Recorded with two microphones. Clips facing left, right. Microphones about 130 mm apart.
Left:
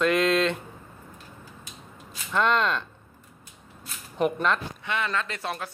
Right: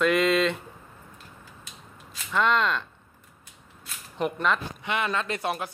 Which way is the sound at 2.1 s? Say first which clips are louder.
Even; centre (ahead or behind).